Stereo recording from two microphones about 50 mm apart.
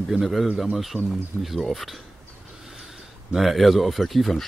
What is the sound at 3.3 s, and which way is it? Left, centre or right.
Speech, centre.